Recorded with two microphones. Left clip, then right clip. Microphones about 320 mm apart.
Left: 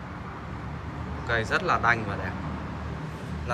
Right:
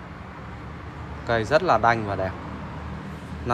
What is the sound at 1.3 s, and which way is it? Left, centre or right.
Speech, centre.